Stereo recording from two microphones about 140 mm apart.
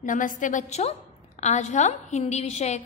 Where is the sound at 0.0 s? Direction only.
70° left (ahead or behind).